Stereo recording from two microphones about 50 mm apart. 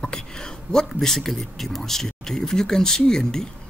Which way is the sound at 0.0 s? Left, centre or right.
Centre.